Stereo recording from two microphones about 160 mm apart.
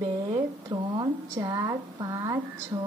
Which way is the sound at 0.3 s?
25° right (ahead or behind).